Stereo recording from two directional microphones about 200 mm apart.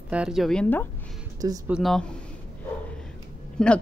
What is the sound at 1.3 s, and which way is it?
Speech, 15° right (ahead or behind).